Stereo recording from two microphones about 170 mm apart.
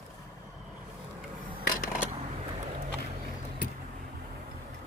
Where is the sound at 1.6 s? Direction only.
55° left (ahead or behind).